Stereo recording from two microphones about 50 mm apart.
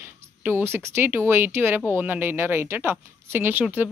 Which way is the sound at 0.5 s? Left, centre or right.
Right.